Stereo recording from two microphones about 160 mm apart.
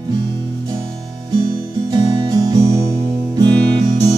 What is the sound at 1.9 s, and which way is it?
Music, 25° right (ahead or behind).